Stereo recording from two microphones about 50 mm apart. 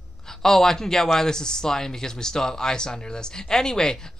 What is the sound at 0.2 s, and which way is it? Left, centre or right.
Speech, centre.